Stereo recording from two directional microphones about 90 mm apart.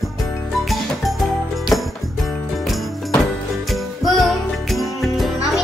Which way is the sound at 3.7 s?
Centre (ahead or behind).